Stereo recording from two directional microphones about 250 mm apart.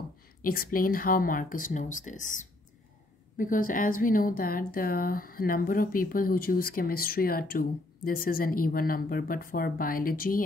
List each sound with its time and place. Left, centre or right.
0.4 s a woman's voice: left